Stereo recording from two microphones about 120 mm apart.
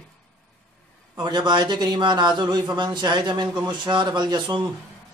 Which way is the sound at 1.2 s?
40° right (ahead or behind).